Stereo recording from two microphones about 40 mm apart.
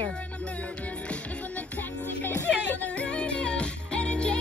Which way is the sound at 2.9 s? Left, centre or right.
Left.